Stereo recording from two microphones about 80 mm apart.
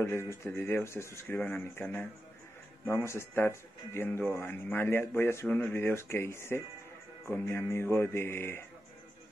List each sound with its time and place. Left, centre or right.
0.0 s speech: left
1.3 s speech: left
3.1 s speech: left